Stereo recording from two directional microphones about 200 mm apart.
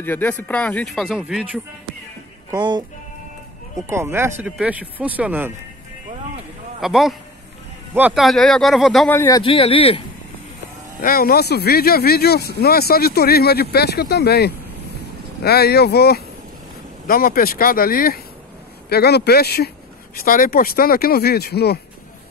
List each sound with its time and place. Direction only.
0.0 s speech: 10° left (ahead or behind)
2.5 s music: 20° right (ahead or behind)
3.8 s speech: 10° right (ahead or behind)
6.8 s speech: centre (ahead or behind)
9.4 s speech: 25° left (ahead or behind)
11.0 s speech: 45° left (ahead or behind)